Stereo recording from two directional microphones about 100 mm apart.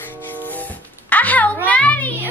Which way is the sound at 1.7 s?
15° left (ahead or behind).